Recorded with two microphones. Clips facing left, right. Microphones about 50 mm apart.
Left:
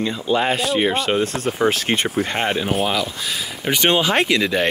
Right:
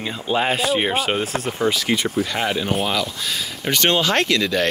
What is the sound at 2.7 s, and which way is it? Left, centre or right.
Speech, centre.